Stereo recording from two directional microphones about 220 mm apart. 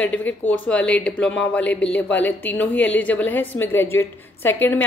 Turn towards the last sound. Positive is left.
turn(degrees=10)  # may be behind; listen again after turning